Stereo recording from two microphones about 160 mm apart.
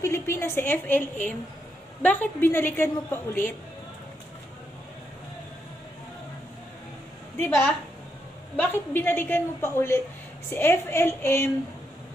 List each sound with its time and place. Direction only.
0.0 s a woman's voice: 15° left (ahead or behind)
2.0 s a woman's voice: 10° left (ahead or behind)
7.3 s a woman's voice: 15° left (ahead or behind)